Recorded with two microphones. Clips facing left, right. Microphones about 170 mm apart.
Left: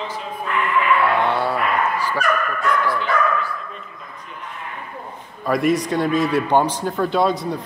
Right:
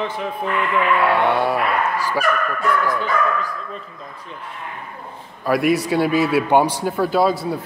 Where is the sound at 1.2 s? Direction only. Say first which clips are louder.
Right 2 dB; 15° right (ahead or behind).